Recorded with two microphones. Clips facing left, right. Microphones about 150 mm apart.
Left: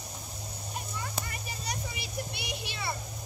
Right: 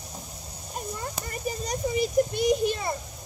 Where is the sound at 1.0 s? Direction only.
40° right (ahead or behind).